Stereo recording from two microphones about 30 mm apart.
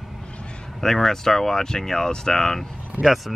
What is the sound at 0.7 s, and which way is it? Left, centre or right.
Speech, centre.